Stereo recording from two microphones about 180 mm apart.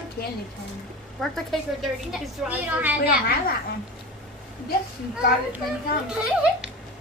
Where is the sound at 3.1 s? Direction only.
55° left (ahead or behind).